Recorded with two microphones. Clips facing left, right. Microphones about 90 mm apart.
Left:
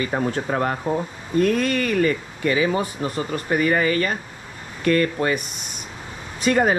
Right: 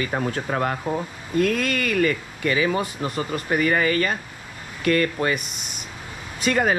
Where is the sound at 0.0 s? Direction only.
35° left (ahead or behind).